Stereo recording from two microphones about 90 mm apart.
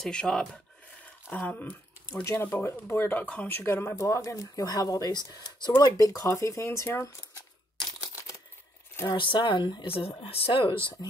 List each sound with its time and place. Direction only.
0.0 s speech: 10° left (ahead or behind); by 7.1 s 30° left (ahead or behind)
8.0 s typewriter: 40° left (ahead or behind)
9.1 s speech: 65° left (ahead or behind)
9.8 s speech: 90° left; by 10.8 s 70° left (ahead or behind)